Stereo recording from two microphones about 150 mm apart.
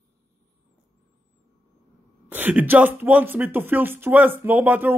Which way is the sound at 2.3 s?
10° right (ahead or behind).